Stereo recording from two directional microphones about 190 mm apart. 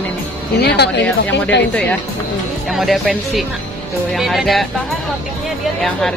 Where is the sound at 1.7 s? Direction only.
5° left (ahead or behind).